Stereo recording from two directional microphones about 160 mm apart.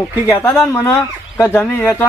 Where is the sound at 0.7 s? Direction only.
15° left (ahead or behind).